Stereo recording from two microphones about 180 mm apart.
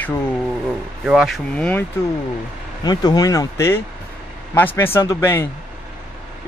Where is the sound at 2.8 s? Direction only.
20° left (ahead or behind).